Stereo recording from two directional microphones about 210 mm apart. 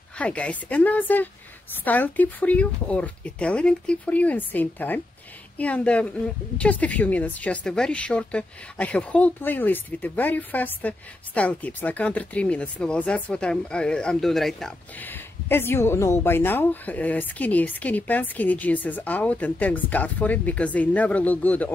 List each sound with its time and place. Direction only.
0.2 s a woman's voice: 5° left (ahead or behind)